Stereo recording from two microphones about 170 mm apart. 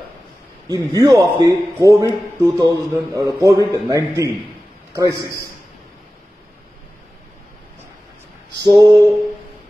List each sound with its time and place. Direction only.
0.7 s a man's voice: 20° right (ahead or behind)
8.6 s a man's voice: 25° right (ahead or behind)